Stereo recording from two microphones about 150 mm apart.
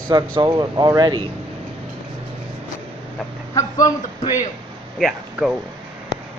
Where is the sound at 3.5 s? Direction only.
20° left (ahead or behind).